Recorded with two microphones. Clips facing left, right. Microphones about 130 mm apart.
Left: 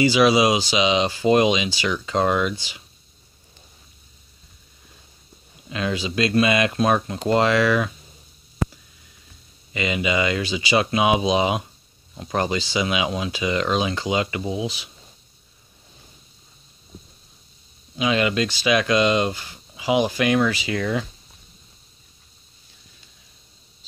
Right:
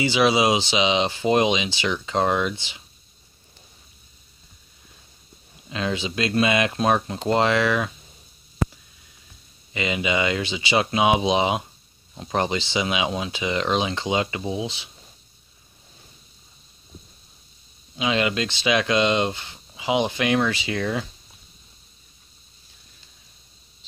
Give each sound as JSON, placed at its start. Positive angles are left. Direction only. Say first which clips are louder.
{"t": 0.0, "sound": "speech", "louder": "left 3 dB", "side_deg": -25}
{"t": 5.7, "sound": "speech", "louder": "left 1 dB", "side_deg": -25}
{"t": 9.8, "sound": "speech", "louder": "left 1 dB", "side_deg": -20}
{"t": 17.9, "sound": "speech", "louder": "left 2 dB", "side_deg": -25}